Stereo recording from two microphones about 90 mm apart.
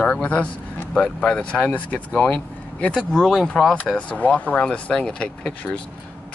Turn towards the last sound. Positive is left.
turn(degrees=10)  # may be behind; listen again after turning